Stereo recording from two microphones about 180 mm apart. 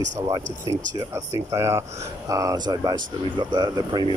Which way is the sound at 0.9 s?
20° right (ahead or behind).